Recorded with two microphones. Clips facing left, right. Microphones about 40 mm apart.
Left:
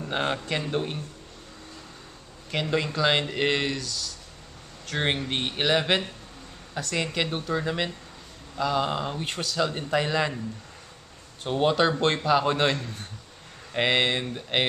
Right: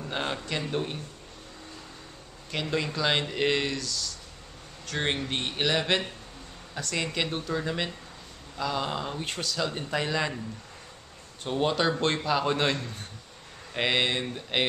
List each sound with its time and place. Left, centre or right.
0.0 s speech: centre
2.5 s speech: centre
11.4 s speech: centre